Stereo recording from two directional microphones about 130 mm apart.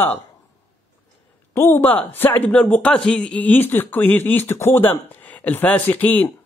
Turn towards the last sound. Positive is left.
turn(degrees=15)  # may be behind; listen again after turning